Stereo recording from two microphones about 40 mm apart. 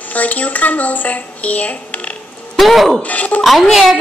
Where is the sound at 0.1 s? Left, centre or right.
Left.